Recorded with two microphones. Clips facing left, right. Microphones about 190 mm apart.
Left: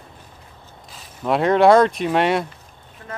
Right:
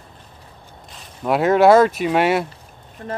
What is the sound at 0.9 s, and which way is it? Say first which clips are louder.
Speech: right 1 dB; 5° right (ahead or behind).